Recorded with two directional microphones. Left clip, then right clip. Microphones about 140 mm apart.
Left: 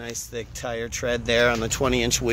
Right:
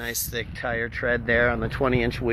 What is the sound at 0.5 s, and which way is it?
Speech, 25° left (ahead or behind).